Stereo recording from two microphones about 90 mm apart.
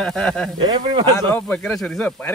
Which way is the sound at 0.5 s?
60° right (ahead or behind).